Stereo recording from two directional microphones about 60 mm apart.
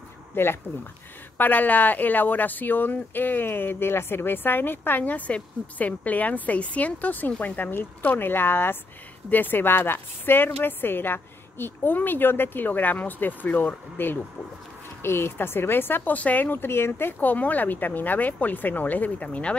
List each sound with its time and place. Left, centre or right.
0.4 s speech: left